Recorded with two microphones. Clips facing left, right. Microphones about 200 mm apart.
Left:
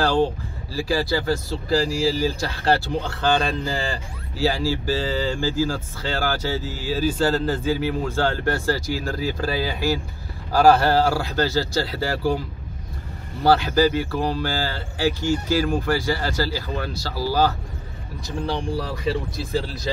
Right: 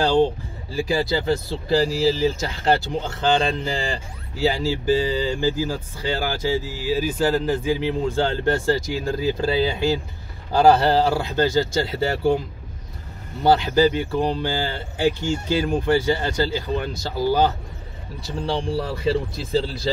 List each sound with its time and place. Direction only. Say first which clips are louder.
0.0 s speech: right 2 dB; 20° right (ahead or behind)